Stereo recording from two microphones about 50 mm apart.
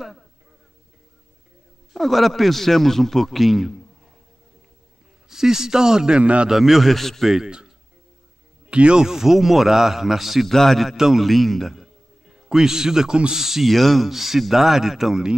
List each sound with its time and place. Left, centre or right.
2.0 s speech: centre
5.3 s a man's voice: centre
6.5 s speech: centre
7.3 s a man's voice: centre
9.0 s speech: centre
10.5 s speech: centre
12.4 s speech: centre